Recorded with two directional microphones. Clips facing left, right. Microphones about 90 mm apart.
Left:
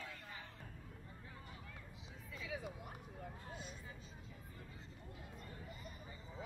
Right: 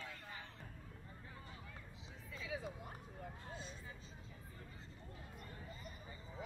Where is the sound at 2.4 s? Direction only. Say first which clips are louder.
Right 1 dB; 30° right (ahead or behind).